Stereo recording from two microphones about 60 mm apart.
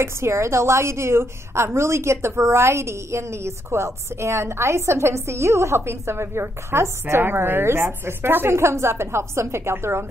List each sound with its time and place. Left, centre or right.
0.0 s a woman's voice: right